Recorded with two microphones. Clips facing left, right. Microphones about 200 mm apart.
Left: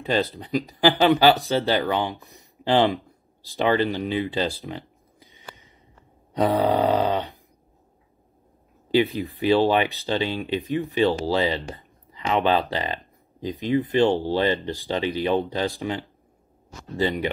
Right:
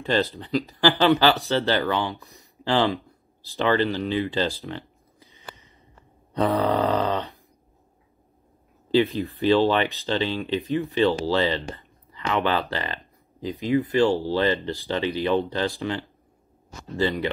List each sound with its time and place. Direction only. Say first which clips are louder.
0.1 s speech: even; 15° left (ahead or behind)
6.3 s a sound: left 1 dB; 15° left (ahead or behind)
9.3 s speech: left 1 dB; 15° left (ahead or behind)